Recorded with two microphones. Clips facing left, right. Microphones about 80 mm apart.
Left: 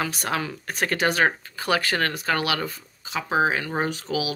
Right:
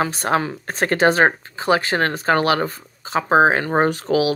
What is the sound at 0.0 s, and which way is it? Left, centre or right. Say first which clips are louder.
Speech: right 7 dB; right.